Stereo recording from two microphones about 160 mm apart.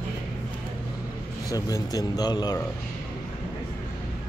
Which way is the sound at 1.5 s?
20° left (ahead or behind).